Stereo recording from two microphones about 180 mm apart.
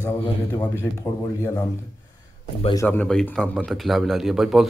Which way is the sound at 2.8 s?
5° left (ahead or behind).